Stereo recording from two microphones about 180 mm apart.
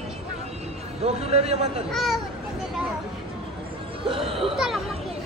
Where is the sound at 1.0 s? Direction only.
35° right (ahead or behind).